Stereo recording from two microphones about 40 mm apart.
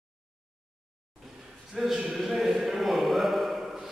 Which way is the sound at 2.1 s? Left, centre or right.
Centre.